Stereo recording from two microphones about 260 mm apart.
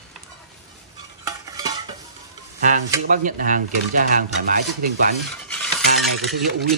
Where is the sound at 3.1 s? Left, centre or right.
Right.